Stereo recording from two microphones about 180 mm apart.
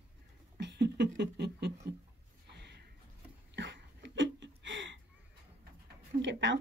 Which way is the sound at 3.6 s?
85° right.